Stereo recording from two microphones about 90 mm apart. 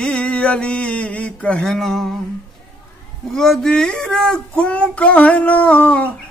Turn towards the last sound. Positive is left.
turn(degrees=15)  # may be behind; listen again after turning